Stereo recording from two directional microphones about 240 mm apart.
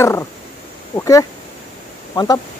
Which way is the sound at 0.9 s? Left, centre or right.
Centre.